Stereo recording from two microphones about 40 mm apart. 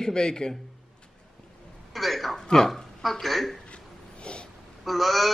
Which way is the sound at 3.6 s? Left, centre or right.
Left.